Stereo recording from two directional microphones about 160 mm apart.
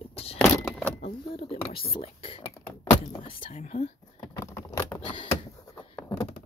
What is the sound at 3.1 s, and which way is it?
Whispering, 35° left (ahead or behind).